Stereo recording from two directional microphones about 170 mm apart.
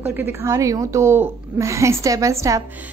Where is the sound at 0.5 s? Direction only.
20° right (ahead or behind).